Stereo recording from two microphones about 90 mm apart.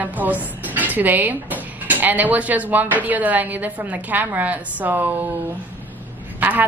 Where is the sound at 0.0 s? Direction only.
20° right (ahead or behind).